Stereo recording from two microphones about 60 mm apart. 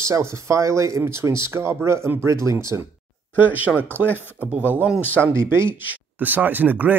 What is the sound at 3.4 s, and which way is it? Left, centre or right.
Speech, right.